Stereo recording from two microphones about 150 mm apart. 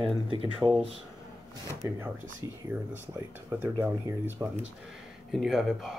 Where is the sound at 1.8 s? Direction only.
20° right (ahead or behind).